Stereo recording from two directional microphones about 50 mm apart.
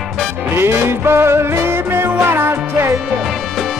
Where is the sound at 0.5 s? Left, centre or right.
Right.